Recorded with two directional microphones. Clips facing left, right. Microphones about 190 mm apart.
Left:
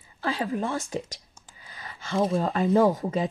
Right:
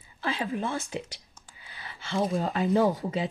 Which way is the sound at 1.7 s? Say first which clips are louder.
Left 3 dB; 45° left (ahead or behind).